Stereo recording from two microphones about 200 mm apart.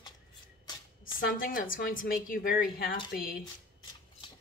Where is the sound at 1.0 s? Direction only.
45° left (ahead or behind).